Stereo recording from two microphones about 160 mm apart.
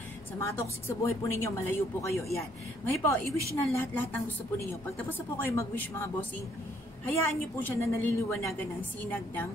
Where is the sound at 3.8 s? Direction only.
10° left (ahead or behind).